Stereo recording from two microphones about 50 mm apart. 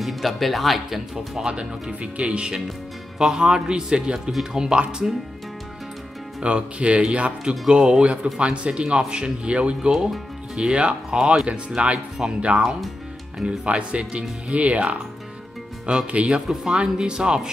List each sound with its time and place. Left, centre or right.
0.0 s speech: centre
1.1 s speech: centre
6.4 s speech: right
16.1 s speech: right
16.3 s speech: centre